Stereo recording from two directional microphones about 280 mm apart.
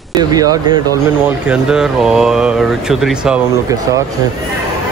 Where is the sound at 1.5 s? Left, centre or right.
Centre.